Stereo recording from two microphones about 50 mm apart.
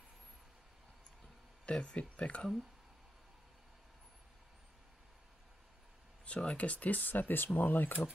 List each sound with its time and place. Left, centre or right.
1.7 s speech: left
6.2 s speech: left